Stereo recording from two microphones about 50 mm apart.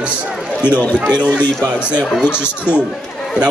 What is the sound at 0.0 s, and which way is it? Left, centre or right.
Run, right.